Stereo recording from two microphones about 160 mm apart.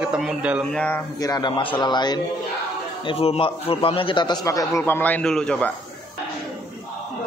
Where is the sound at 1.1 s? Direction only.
25° left (ahead or behind); by 5.7 s 5° left (ahead or behind).